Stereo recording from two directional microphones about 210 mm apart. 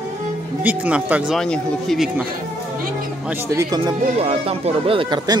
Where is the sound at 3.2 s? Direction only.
10° right (ahead or behind).